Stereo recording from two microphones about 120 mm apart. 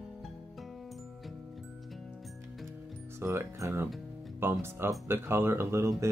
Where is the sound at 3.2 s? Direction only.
20° right (ahead or behind).